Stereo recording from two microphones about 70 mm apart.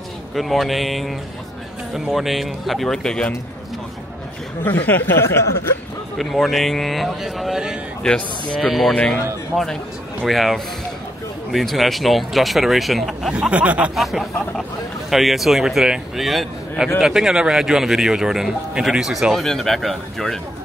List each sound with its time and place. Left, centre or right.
0.3 s speech: centre
4.6 s speech: left
5.1 s speech: left
6.1 s speech: centre
8.9 s a man's voice: centre
10.2 s speech: centre
13.3 s speech: centre
13.9 s speech: centre